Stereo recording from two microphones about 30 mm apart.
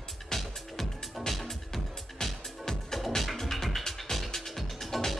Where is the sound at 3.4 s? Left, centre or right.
Centre.